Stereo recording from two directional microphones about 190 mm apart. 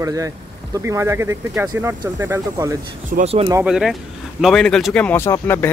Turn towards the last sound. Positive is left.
turn(degrees=10)  # may be behind; listen again after turning